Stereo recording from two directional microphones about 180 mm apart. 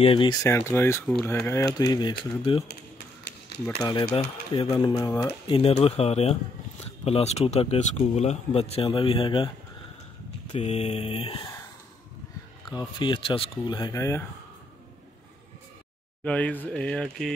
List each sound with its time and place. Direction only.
0.0 s speech: 30° left (ahead or behind)
3.5 s a sound: 65° left (ahead or behind)
4.6 s speech: 25° left (ahead or behind)
10.5 s speech: 35° left (ahead or behind)
12.6 s speech: 25° left (ahead or behind)
16.3 s speech: 5° left (ahead or behind)